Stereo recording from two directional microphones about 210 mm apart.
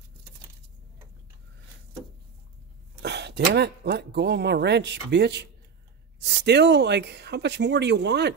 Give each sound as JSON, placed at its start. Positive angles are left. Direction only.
{"t": 3.0, "sound": "speech", "side_deg": -55}